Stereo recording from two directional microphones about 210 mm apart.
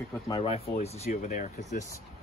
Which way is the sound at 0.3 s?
30° left (ahead or behind).